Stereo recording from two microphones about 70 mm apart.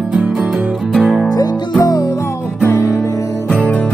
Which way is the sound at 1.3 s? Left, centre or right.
Left.